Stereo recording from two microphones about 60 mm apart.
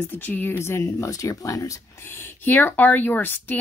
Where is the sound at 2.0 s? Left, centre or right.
Left.